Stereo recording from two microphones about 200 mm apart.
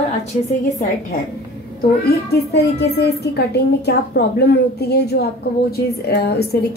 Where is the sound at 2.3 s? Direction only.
55° left (ahead or behind).